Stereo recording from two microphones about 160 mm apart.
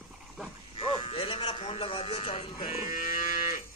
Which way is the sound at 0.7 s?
35° left (ahead or behind).